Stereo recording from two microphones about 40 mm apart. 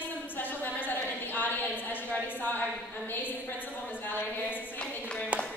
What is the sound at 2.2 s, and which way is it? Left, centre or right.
A woman's voice, left.